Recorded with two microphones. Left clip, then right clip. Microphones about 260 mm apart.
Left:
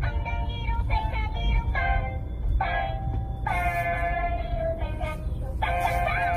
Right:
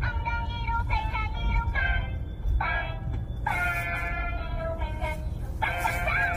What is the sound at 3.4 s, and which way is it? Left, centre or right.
Music, left.